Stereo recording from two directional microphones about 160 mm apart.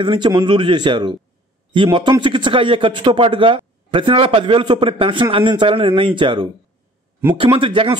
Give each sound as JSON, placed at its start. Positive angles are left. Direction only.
{"t": 0.0, "sound": "speech", "side_deg": -30}